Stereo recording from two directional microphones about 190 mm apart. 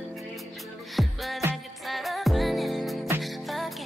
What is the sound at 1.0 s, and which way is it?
Music, centre (ahead or behind).